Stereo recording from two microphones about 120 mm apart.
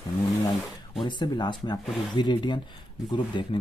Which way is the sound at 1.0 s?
40° left (ahead or behind).